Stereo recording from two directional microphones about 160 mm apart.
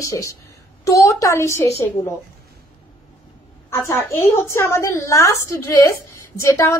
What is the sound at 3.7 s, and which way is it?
A woman's voice, 15° left (ahead or behind).